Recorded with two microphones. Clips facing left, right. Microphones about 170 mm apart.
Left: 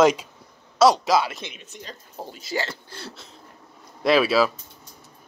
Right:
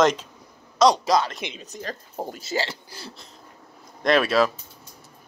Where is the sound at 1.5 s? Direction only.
40° right (ahead or behind).